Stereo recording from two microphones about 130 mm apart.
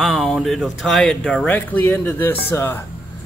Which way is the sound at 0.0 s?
5° left (ahead or behind).